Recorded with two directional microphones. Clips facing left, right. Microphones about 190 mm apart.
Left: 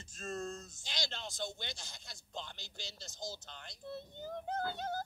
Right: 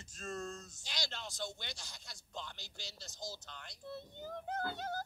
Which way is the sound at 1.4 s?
25° left (ahead or behind).